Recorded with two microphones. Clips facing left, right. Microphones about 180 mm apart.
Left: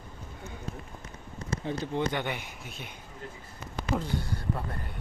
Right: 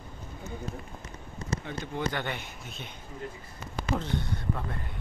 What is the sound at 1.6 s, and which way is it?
Speech, 30° left (ahead or behind).